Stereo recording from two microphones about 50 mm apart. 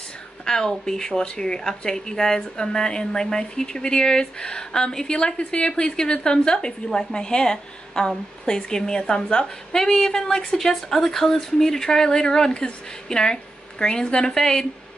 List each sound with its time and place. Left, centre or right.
0.5 s speech: centre